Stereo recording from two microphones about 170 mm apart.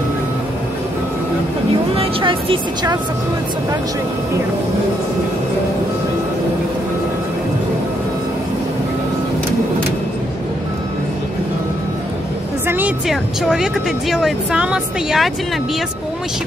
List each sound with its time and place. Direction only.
2.0 s speech: 30° right (ahead or behind)
12.6 s music: 10° right (ahead or behind)
13.1 s speech: centre (ahead or behind)